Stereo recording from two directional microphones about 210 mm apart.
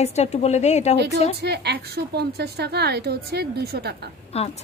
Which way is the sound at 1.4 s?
50° right (ahead or behind).